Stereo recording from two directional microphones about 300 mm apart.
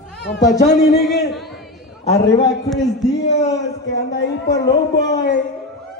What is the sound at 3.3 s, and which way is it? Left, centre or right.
Speech, left.